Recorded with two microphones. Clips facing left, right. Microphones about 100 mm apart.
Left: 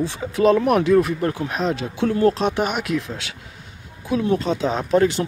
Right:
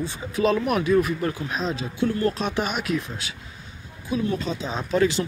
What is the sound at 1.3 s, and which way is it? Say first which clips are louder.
Speech: left 4 dB; 70° left (ahead or behind).